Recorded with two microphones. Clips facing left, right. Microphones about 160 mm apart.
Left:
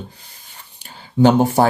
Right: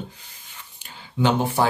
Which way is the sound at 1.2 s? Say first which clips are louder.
Left 8 dB; 40° left (ahead or behind).